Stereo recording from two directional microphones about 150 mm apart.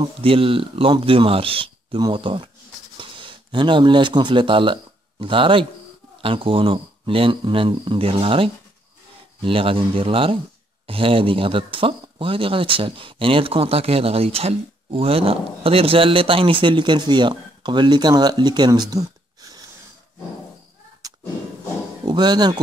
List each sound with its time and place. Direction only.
0.2 s speech: 35° right (ahead or behind)
22.0 s speech: 30° right (ahead or behind)